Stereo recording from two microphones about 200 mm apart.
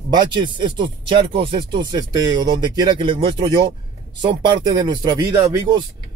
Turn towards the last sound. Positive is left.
turn(degrees=-20)  # may be behind; listen again after turning